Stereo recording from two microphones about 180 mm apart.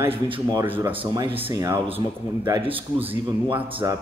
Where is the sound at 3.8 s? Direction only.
20° right (ahead or behind).